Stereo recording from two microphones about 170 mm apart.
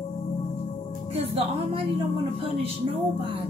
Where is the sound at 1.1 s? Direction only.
35° right (ahead or behind).